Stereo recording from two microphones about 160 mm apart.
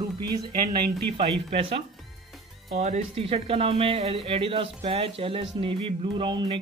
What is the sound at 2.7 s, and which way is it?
A man's voice, 45° right (ahead or behind).